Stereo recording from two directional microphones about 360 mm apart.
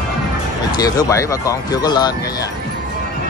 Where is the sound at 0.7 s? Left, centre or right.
Centre.